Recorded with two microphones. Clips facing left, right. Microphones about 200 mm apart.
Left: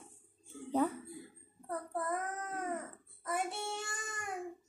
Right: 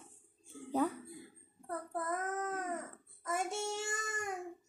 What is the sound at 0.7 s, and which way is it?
Music, centre (ahead or behind).